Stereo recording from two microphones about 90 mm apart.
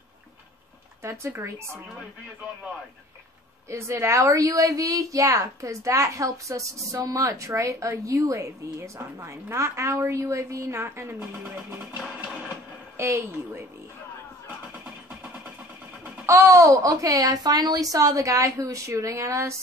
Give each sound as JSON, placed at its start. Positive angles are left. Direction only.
{"t": 1.0, "sound": "a woman's voice", "side_deg": -30}
{"t": 3.7, "sound": "a woman's voice", "side_deg": -30}
{"t": 12.9, "sound": "a woman's voice", "side_deg": -30}
{"t": 16.3, "sound": "a woman's voice", "side_deg": -30}